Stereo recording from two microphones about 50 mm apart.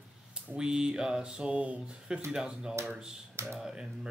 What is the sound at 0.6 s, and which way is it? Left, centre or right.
Speech, centre.